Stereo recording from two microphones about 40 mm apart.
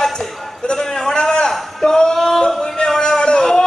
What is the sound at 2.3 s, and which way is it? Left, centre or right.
Yodeling, centre.